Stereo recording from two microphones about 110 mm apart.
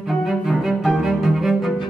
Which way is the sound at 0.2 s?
Centre (ahead or behind).